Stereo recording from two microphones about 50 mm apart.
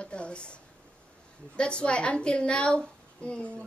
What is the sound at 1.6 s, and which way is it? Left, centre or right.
A woman's voice, centre.